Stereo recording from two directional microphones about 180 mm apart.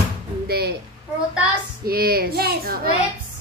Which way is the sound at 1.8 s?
55° right (ahead or behind).